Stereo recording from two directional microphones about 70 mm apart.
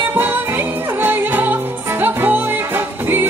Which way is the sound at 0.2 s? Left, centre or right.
Right.